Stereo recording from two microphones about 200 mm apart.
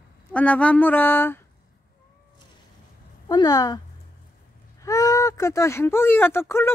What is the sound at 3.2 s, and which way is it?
Speech, 20° left (ahead or behind).